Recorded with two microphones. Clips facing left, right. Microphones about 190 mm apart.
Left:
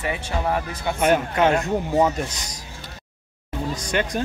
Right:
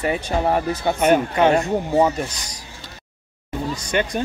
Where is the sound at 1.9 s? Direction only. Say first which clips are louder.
Right 2 dB; 10° right (ahead or behind).